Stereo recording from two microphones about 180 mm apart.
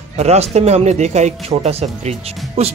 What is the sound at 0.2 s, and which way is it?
Speech, 35° right (ahead or behind).